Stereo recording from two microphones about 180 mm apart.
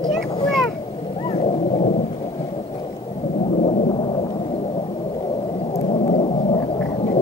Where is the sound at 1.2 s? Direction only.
35° left (ahead or behind).